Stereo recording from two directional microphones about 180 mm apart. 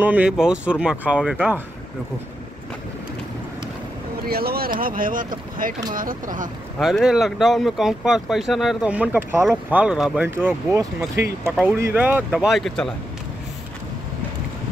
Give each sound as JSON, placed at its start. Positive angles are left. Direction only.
{"t": 0.0, "sound": "speech", "side_deg": -5}
{"t": 4.2, "sound": "speech", "side_deg": -60}
{"t": 6.8, "sound": "speech", "side_deg": 0}